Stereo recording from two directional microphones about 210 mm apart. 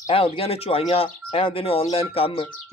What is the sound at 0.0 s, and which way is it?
Speech, 25° left (ahead or behind).